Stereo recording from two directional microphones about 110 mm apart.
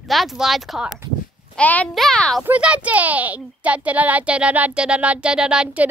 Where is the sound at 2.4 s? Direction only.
10° right (ahead or behind).